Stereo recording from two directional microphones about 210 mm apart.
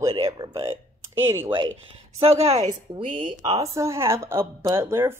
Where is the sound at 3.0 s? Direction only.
35° right (ahead or behind).